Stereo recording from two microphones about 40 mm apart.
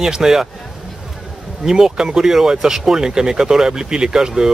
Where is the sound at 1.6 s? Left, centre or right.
Centre.